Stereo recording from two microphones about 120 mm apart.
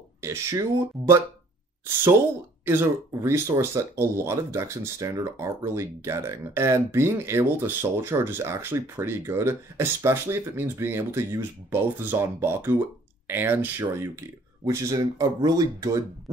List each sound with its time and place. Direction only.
0.2 s speech: 25° right (ahead or behind)
2.6 s speech: 20° right (ahead or behind)